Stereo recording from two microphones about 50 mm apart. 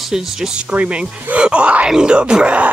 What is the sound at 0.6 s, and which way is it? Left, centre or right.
Speech, right.